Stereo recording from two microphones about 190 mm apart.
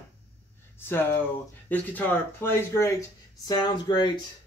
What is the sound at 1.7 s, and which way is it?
Speech, 10° left (ahead or behind).